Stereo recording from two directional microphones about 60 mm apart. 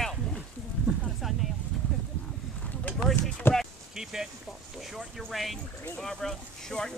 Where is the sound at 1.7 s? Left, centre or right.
Centre.